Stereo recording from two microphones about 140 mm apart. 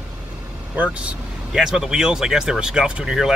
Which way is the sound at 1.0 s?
5° right (ahead or behind).